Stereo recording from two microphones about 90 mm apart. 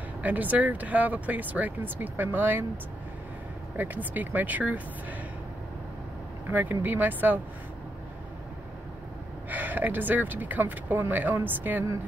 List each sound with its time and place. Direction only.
0.2 s speech: 20° right (ahead or behind)
3.7 s speech: 20° right (ahead or behind)
6.5 s speech: 20° right (ahead or behind)
9.5 s speech: 20° right (ahead or behind)